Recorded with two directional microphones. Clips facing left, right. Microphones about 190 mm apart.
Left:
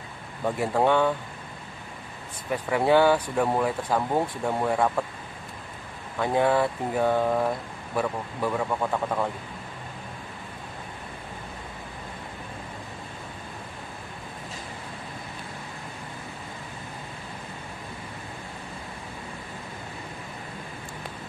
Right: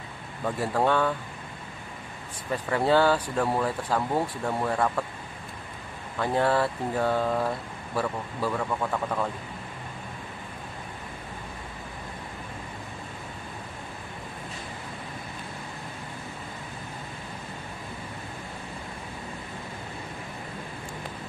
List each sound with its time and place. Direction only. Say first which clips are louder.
0.6 s speech: left 2 dB; 15° left (ahead or behind)
2.5 s speech: left 2 dB; 15° left (ahead or behind)
6.1 s speech: left 2 dB; 15° left (ahead or behind)